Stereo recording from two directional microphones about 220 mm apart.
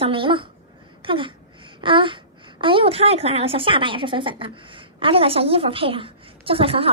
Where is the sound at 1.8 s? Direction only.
20° right (ahead or behind).